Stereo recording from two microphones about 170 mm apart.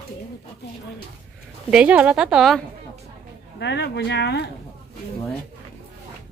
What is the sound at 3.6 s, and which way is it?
Speech, 85° left.